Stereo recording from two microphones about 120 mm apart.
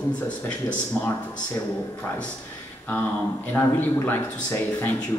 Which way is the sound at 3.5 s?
15° left (ahead or behind).